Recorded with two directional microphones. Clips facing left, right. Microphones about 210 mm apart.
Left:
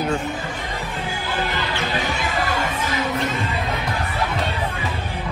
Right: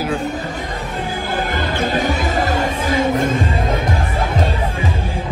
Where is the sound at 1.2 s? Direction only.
50° right (ahead or behind).